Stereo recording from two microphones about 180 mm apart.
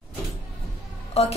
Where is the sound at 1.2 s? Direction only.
35° left (ahead or behind).